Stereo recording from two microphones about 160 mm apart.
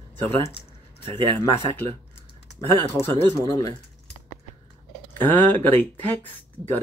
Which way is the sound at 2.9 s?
15° left (ahead or behind).